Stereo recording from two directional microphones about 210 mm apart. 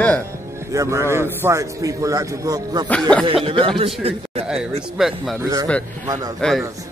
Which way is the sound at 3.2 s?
25° right (ahead or behind).